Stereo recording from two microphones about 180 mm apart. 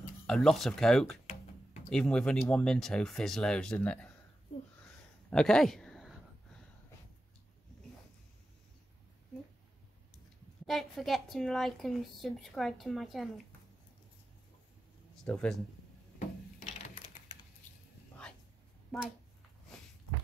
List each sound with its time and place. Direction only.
0.3 s speech: centre (ahead or behind)
5.3 s speech: 5° left (ahead or behind)
10.7 s speech: centre (ahead or behind)
15.2 s speech: 5° left (ahead or behind)
18.9 s speech: centre (ahead or behind)